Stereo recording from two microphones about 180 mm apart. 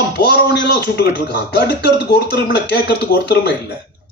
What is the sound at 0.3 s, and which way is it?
Speech, 70° left (ahead or behind).